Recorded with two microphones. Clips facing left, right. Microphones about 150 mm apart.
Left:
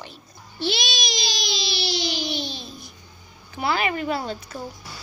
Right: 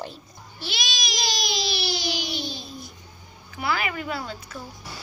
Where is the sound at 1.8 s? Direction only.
25° left (ahead or behind).